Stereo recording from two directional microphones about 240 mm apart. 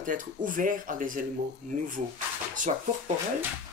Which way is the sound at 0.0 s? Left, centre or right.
Right.